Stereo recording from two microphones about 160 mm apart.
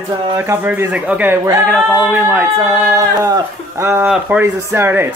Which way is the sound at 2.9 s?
20° right (ahead or behind).